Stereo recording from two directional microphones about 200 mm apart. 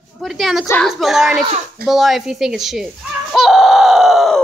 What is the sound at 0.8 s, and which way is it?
Speech, centre (ahead or behind).